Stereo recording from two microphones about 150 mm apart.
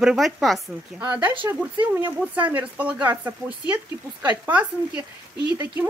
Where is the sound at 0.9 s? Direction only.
10° right (ahead or behind).